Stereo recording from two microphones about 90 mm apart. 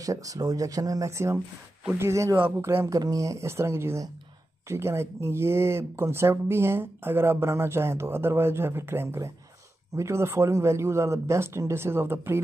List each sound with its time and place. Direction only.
0.0 s speech: 40° right (ahead or behind)
2.9 s speech: 40° right (ahead or behind)